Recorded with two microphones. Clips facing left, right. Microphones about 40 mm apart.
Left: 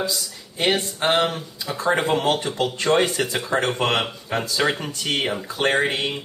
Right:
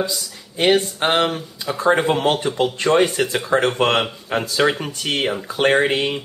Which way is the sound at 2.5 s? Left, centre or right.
Right.